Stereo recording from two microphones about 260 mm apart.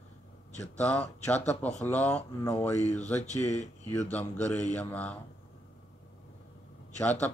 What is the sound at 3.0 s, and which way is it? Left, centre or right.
Speech, left.